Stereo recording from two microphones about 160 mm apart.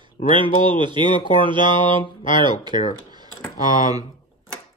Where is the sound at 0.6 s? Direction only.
30° right (ahead or behind).